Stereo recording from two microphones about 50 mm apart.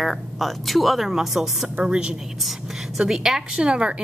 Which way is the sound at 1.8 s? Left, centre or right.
Centre.